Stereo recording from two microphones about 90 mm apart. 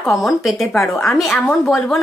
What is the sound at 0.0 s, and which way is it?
A woman's voice, centre (ahead or behind).